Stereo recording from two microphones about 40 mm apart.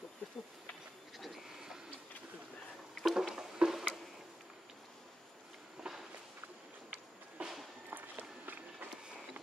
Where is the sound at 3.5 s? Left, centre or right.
Centre.